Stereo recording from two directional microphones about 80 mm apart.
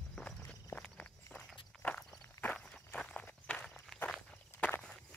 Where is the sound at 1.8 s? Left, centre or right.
Centre.